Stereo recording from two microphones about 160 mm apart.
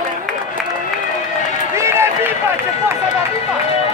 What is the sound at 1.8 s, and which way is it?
Run, 15° right (ahead or behind).